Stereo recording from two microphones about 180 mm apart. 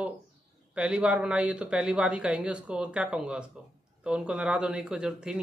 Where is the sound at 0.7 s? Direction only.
5° right (ahead or behind).